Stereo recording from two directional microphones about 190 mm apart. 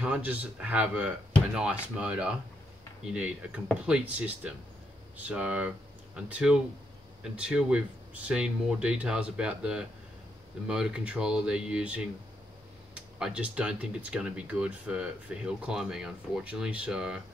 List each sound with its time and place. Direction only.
0.0 s speech: 10° right (ahead or behind)